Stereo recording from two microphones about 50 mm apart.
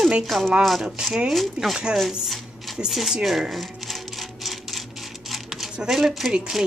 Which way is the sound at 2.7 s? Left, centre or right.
Centre.